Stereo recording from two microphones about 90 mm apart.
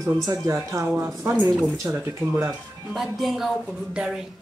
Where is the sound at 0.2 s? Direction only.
35° right (ahead or behind).